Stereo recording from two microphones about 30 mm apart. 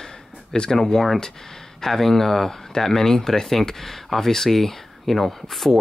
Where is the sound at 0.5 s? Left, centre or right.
Left.